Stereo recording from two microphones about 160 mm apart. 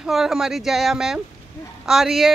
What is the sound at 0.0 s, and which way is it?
Speech, 5° right (ahead or behind).